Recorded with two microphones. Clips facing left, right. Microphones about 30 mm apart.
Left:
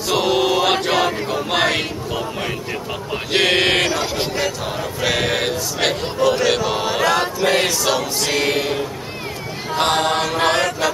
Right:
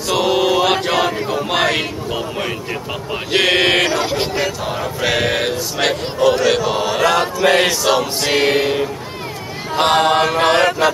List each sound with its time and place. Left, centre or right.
0.1 s a sound: centre
3.3 s speech: centre
4.0 s choir: centre
4.6 s speech: centre
7.4 s choir: centre